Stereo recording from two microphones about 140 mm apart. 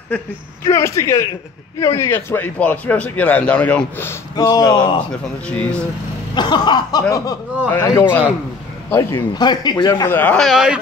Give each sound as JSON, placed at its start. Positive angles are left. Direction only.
{"t": 0.7, "sound": "a man's voice", "side_deg": 20}
{"t": 4.4, "sound": "speech", "side_deg": 30}
{"t": 5.5, "sound": "a man's voice", "side_deg": 10}
{"t": 6.3, "sound": "speech", "side_deg": 30}
{"t": 7.6, "sound": "a man's voice", "side_deg": 15}
{"t": 9.3, "sound": "speech", "side_deg": 30}
{"t": 10.4, "sound": "speech", "side_deg": -5}